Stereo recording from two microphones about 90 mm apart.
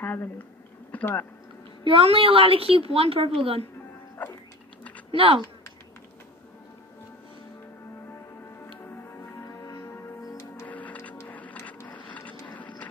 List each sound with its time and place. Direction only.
0.0 s speech: 25° left (ahead or behind)
1.9 s a woman's voice: 85° right
5.1 s speech: 80° right
9.5 s music: 40° left (ahead or behind)
10.7 s music: 15° left (ahead or behind)
11.9 s a sound: 15° left (ahead or behind)